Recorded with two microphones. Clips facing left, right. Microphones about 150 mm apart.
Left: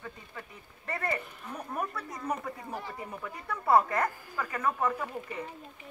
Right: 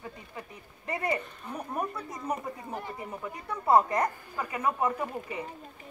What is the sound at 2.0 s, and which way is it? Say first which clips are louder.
Speech: right 1 dB; 20° right (ahead or behind).